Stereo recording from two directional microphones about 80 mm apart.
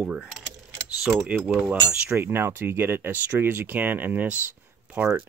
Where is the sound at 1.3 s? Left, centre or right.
Centre.